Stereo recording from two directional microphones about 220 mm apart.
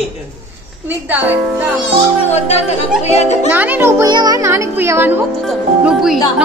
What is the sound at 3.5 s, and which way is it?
Speech, 10° right (ahead or behind).